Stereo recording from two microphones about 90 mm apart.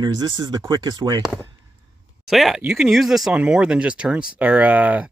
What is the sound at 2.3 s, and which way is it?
Speech, centre (ahead or behind).